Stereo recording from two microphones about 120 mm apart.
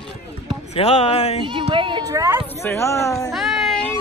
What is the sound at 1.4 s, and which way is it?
Speech, 45° right (ahead or behind).